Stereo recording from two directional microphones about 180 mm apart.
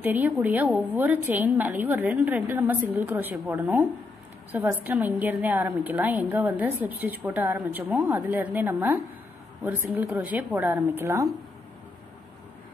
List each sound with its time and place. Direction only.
0.0 s a woman's voice: 10° right (ahead or behind)